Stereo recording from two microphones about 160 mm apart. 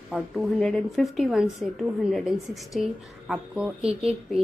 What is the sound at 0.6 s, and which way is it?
A woman's voice, 5° left (ahead or behind).